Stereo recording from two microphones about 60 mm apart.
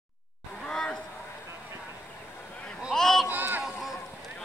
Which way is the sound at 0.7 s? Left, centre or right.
Centre.